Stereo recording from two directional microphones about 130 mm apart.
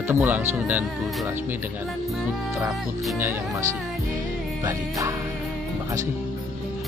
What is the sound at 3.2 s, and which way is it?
Speech, 15° right (ahead or behind).